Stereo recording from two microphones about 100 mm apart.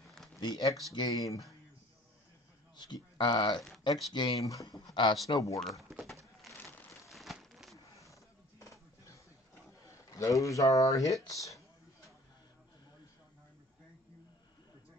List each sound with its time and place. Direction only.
0.1 s a sound: 5° left (ahead or behind)
0.4 s speech: 40° left (ahead or behind)
2.9 s speech: 45° left (ahead or behind)
4.5 s speech: 35° left (ahead or behind)
5.2 s speech: 35° left (ahead or behind)
5.6 s speech: centre (ahead or behind)
7.1 s a sound: centre (ahead or behind)
8.6 s a sound: 30° left (ahead or behind)
9.8 s speech: 35° left (ahead or behind)